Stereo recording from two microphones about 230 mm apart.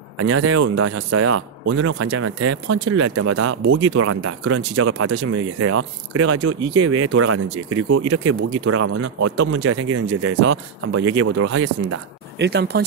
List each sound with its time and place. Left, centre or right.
0.2 s speech: right
5.1 s speech: right
8.1 s speech: right
10.4 s speech: right